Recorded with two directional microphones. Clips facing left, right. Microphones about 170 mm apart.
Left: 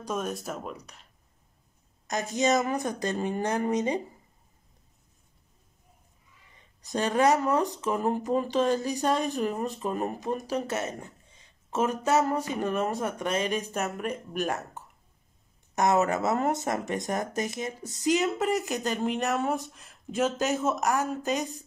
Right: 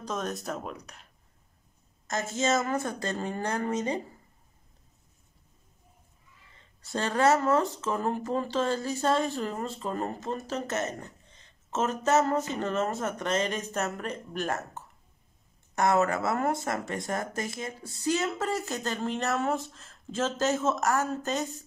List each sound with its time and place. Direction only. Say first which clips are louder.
0.0 s speech: left 1 dB; 10° left (ahead or behind)
2.0 s speech: left 2 dB; 15° left (ahead or behind)
6.5 s speech: left 2 dB; 15° left (ahead or behind)